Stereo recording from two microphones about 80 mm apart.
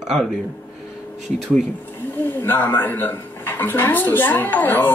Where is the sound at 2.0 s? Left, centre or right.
Left.